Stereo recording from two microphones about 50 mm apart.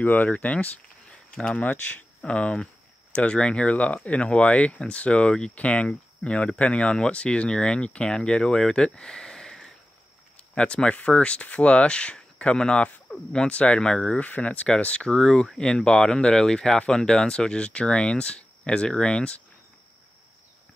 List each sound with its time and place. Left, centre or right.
0.0 s speech: left
1.7 s speech: left
2.2 s speech: left
3.1 s a sound: left
3.3 s speech: left
14.2 s speech: left
15.0 s speech: centre